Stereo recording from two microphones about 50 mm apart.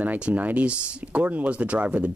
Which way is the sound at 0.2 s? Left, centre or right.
Right.